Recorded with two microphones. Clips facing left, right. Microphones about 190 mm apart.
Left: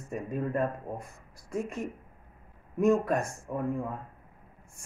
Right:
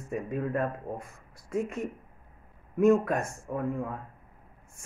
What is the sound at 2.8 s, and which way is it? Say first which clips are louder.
Speech: right 2 dB; 5° right (ahead or behind).